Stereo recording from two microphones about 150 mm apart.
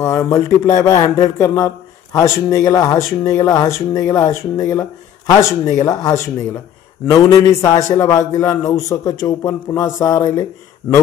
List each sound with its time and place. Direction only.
0.0 s speech: 20° left (ahead or behind)